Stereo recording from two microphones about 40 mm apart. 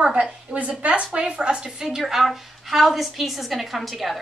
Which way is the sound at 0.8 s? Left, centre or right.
Right.